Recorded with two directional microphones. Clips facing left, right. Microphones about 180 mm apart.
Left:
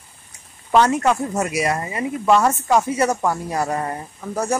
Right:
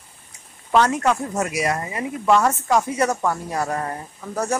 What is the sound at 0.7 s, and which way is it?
Speech, 5° left (ahead or behind).